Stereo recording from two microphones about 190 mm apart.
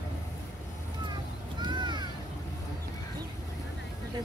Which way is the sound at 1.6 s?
25° right (ahead or behind).